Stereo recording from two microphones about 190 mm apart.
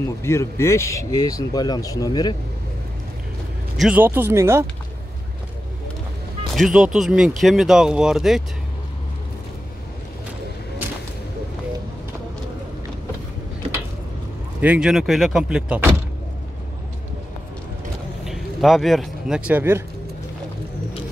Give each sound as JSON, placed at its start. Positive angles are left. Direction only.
{"t": 0.2, "sound": "speech", "side_deg": 15}
{"t": 3.7, "sound": "speech", "side_deg": -5}
{"t": 6.5, "sound": "speech", "side_deg": 0}
{"t": 14.6, "sound": "speech", "side_deg": -5}
{"t": 18.2, "sound": "speech", "side_deg": 0}